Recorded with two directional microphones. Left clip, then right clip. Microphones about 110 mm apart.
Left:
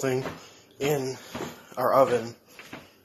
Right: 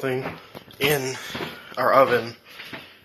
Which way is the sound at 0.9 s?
Centre (ahead or behind).